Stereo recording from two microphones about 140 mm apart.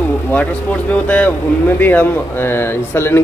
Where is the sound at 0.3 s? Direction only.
10° left (ahead or behind).